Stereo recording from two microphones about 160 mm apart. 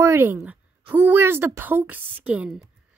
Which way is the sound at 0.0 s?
15° right (ahead or behind).